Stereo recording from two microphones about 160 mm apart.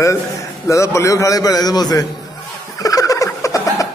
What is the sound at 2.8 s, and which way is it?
Turkey, 20° left (ahead or behind).